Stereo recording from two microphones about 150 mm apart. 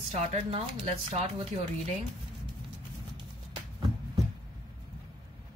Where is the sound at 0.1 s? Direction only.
45° right (ahead or behind).